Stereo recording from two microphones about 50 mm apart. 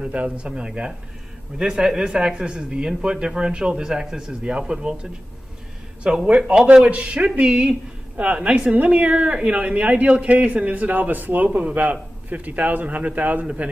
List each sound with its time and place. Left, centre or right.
0.0 s speech: right
6.0 s speech: centre